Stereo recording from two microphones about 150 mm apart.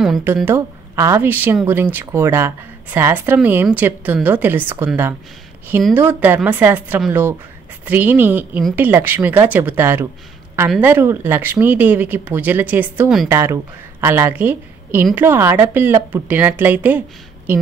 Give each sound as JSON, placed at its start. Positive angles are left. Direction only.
{"t": 0.5, "sound": "a woman's voice", "side_deg": -20}